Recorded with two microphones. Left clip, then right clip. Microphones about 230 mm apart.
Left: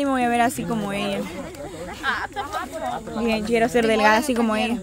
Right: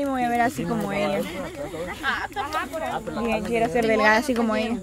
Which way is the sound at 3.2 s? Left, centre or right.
Left.